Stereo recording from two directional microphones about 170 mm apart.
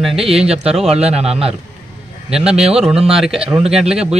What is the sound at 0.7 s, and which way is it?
Speech, 35° right (ahead or behind).